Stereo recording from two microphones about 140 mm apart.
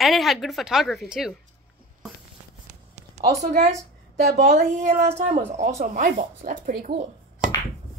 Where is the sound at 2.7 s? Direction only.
55° right (ahead or behind).